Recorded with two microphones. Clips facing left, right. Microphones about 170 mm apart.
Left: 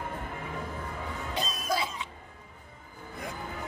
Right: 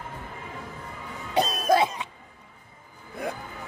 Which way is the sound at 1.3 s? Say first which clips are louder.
Right 11 dB; 65° right (ahead or behind).